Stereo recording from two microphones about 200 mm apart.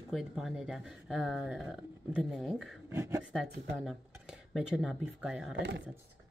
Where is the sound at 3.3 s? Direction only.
Centre (ahead or behind).